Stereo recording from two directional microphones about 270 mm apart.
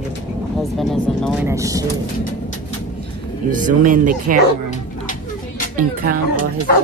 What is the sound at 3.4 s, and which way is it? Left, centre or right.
Speech, right.